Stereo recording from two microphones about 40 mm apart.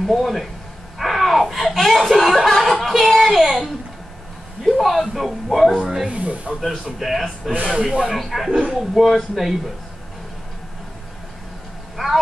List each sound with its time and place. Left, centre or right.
0.0 s speech: centre
4.6 s speech: centre
6.0 s speech: right
7.0 s speech: centre
7.7 s speech: right
8.1 s speech: centre
8.5 s speech: right
8.7 s speech: centre
12.0 s speech: centre